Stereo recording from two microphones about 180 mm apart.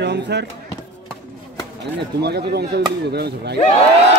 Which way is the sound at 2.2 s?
65° right (ahead or behind).